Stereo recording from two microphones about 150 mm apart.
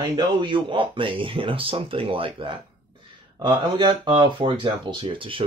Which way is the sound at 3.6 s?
35° right (ahead or behind).